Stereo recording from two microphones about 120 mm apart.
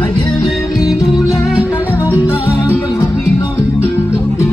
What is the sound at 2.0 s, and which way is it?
Music, 20° left (ahead or behind).